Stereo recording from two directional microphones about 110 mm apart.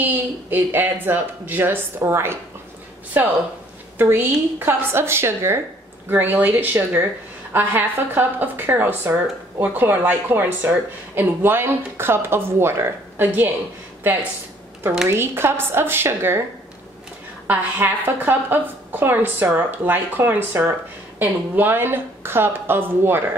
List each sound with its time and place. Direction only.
0.0 s a woman's voice: 15° right (ahead or behind)
15.0 s speech: 20° right (ahead or behind)
17.5 s a woman's voice: 20° right (ahead or behind)